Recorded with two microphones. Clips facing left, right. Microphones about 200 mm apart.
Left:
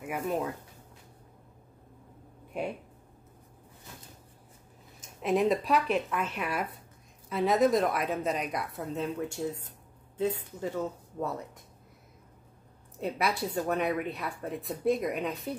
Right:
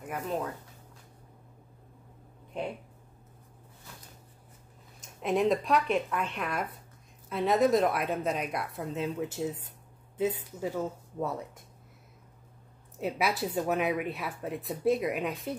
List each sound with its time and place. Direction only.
0.0 s speech: 10° left (ahead or behind)
5.2 s speech: centre (ahead or behind)
10.6 s speech: 5° right (ahead or behind)
13.0 s speech: 5° right (ahead or behind)